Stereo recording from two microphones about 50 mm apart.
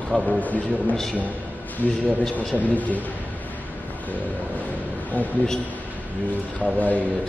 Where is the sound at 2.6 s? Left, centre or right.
Left.